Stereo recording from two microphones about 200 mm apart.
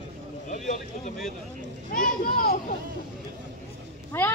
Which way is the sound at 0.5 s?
40° left (ahead or behind).